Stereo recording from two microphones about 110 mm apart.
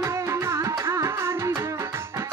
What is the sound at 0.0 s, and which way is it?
Music, 25° right (ahead or behind).